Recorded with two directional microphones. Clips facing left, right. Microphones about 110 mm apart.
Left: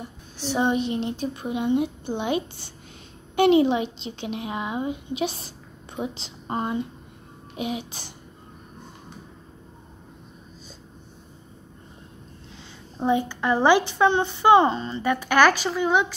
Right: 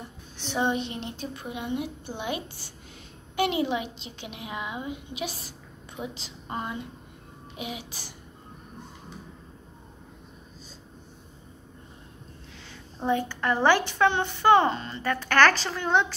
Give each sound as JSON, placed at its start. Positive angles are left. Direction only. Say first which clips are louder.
{"t": 0.4, "sound": "a woman's voice", "louder": "left 4 dB", "side_deg": 10}
{"t": 1.3, "sound": "a woman's voice", "louder": "left 8 dB", "side_deg": 20}
{"t": 13.0, "sound": "a woman's voice", "louder": "left 3 dB", "side_deg": 15}